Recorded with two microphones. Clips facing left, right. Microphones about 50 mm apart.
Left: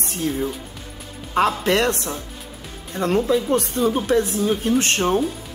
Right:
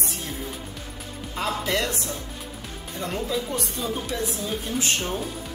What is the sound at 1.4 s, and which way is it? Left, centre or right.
Speech, left.